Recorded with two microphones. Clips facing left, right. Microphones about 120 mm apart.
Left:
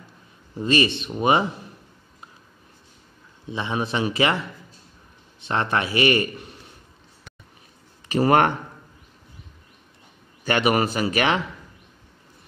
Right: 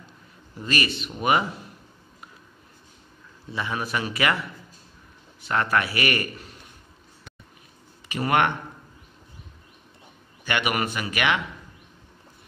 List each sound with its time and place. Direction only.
0.6 s a man's voice: 25° left (ahead or behind)
3.4 s a man's voice: 25° left (ahead or behind)
8.1 s speech: 35° left (ahead or behind)
10.4 s speech: 35° left (ahead or behind)